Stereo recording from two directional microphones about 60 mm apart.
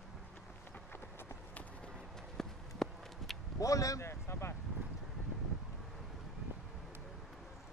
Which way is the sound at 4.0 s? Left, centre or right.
Left.